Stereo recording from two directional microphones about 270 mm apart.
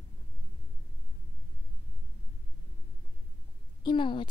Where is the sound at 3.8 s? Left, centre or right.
Centre.